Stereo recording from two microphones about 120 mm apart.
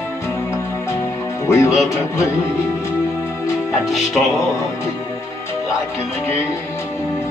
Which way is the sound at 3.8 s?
Centre (ahead or behind).